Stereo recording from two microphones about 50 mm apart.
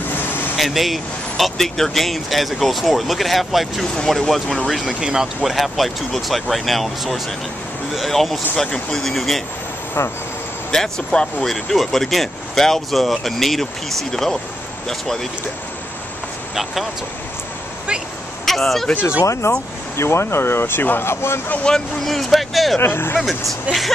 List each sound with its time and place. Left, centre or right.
0.6 s speech: centre
5.0 s speech: centre
10.0 s speech: left
10.7 s speech: centre
18.4 s speech: centre
19.2 s speech: left
20.0 s speech: left
21.6 s speech: centre
22.1 s speech: centre
22.8 s speech: left
23.2 s speech: centre